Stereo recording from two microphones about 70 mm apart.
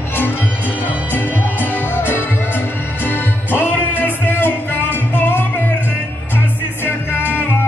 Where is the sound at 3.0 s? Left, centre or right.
Left.